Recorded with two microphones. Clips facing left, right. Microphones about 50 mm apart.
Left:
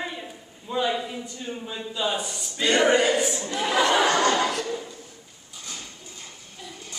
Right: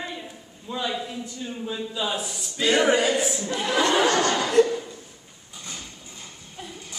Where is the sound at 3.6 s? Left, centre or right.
Centre.